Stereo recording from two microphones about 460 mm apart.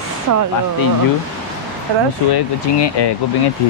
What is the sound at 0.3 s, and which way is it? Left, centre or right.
Speech, right.